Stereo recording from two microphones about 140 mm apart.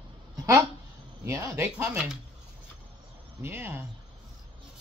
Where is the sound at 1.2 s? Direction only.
20° right (ahead or behind).